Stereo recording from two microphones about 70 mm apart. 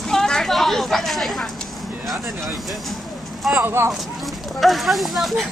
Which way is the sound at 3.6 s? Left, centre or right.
Right.